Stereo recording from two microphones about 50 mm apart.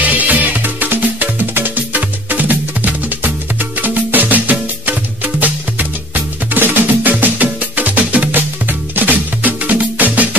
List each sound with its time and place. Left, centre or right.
0.0 s music: right
8.3 s music: right